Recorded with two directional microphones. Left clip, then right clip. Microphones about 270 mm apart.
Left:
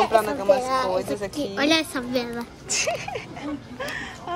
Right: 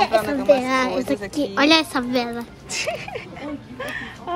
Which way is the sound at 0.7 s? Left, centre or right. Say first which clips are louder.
Right 2 dB; centre.